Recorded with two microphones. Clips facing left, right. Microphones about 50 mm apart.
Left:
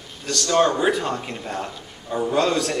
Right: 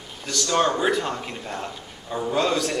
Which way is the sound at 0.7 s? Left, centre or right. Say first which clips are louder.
Left 2 dB; centre.